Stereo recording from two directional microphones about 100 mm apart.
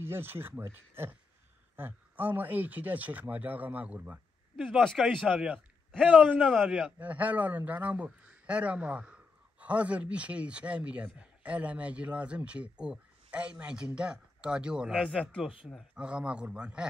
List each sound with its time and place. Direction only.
0.0 s a man's voice: 20° right (ahead or behind)
15.0 s a man's voice: 10° left (ahead or behind)
15.9 s a man's voice: 10° right (ahead or behind)